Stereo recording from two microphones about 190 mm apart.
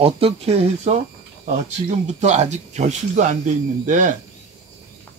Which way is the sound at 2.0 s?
35° right (ahead or behind).